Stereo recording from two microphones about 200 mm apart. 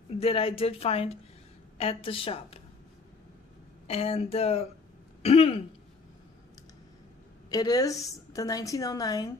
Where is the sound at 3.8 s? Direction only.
30° left (ahead or behind).